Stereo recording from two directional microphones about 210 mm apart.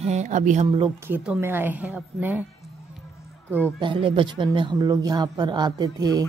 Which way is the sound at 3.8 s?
25° right (ahead or behind).